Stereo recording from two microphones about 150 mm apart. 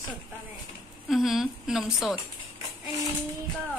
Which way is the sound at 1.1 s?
Centre (ahead or behind).